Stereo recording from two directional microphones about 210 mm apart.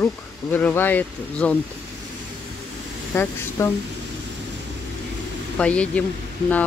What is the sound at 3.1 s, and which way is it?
Speech, 10° left (ahead or behind).